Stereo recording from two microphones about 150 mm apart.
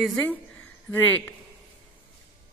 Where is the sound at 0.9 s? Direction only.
10° left (ahead or behind).